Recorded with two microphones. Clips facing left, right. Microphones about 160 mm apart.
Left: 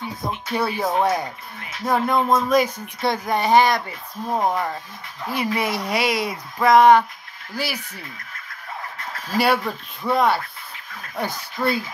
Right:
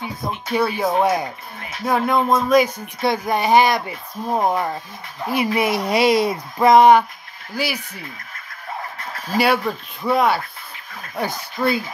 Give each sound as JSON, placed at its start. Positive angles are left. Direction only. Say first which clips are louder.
{"t": 0.3, "sound": "speech", "louder": "right 3 dB", "side_deg": 0}
{"t": 0.9, "sound": "speech", "louder": "right 2 dB", "side_deg": -10}
{"t": 5.9, "sound": "speech", "louder": "right 6 dB", "side_deg": -25}
{"t": 7.5, "sound": "speech", "louder": "right 3 dB", "side_deg": 0}
{"t": 9.4, "sound": "speech", "louder": "right 2 dB", "side_deg": 0}